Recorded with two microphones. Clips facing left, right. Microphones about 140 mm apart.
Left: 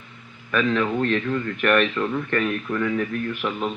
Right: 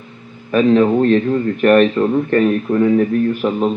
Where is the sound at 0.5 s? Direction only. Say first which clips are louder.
Right 10 dB; 35° right (ahead or behind).